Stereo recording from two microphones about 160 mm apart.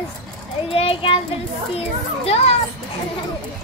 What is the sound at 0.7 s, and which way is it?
Child singing, 35° left (ahead or behind).